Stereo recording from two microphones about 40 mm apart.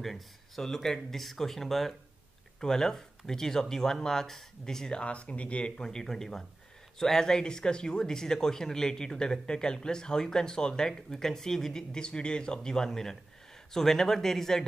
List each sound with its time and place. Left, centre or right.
0.0 s speech: centre
5.0 s speech: left
5.8 s speech: centre